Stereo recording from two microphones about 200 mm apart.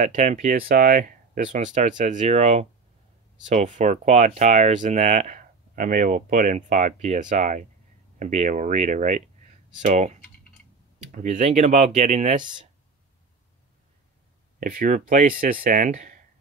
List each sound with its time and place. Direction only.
0.0 s speech: 35° right (ahead or behind)
14.6 s speech: 45° right (ahead or behind)